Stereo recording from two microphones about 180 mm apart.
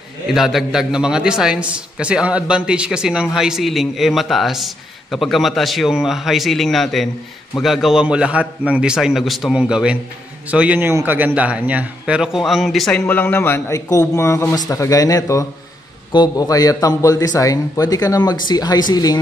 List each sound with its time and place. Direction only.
0.3 s a man's voice: centre (ahead or behind)
13.0 s a man's voice: 10° left (ahead or behind)